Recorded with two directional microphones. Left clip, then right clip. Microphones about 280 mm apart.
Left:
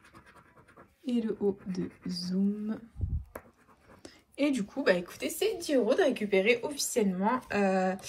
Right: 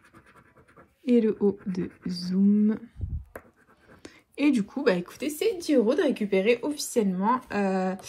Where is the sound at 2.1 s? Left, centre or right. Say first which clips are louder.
Right 3 dB; right.